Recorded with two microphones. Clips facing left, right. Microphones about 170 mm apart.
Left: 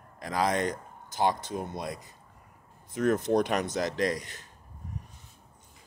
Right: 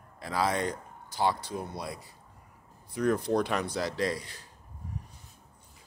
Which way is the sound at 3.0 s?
20° left (ahead or behind).